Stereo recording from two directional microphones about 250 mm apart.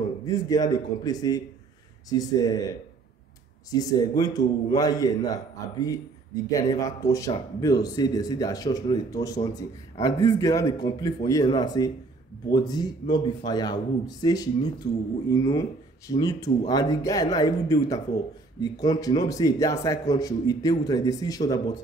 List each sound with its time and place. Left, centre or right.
0.2 s speech: centre
3.7 s speech: centre